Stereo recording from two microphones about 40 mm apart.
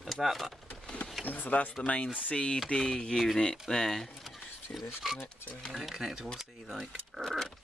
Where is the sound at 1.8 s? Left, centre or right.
Left.